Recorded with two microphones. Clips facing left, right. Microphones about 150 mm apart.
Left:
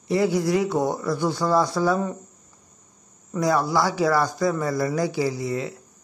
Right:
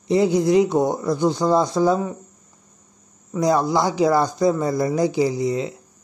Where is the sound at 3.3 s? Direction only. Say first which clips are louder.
Right 3 dB; 20° right (ahead or behind).